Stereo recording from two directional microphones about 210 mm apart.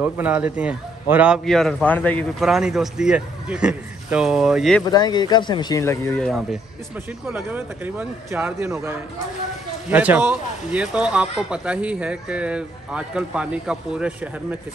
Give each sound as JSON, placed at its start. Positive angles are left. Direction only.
{"t": 0.0, "sound": "a man's voice", "side_deg": -5}
{"t": 4.8, "sound": "speech", "side_deg": 20}
{"t": 6.2, "sound": "a man's voice", "side_deg": 0}